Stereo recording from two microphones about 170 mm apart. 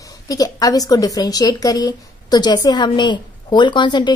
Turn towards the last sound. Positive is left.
turn(degrees=25)  # may be behind; listen again after turning